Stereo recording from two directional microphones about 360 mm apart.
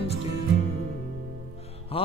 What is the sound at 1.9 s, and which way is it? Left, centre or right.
Mantra, centre.